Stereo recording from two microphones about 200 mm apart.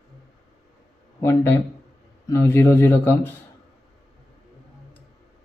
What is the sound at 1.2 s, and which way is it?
Speech, 10° left (ahead or behind).